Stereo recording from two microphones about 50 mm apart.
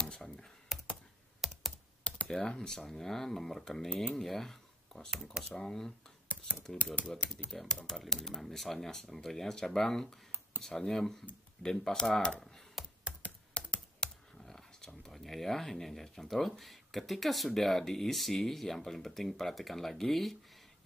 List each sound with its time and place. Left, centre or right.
0.0 s computer keyboard: centre
0.7 s computer keyboard: centre
2.2 s speech: centre
6.2 s a sound: left
6.8 s speech: left
7.5 s speech: centre
13.2 s speech: left; by 20.3 s centre